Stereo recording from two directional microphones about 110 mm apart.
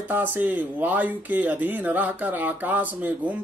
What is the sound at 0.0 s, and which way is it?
Speech, 15° right (ahead or behind).